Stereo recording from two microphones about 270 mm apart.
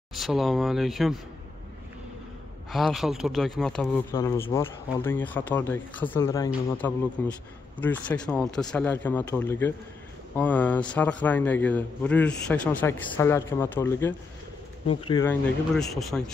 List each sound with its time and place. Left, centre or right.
0.1 s speech: centre
2.7 s speech: centre
15.2 s speech: centre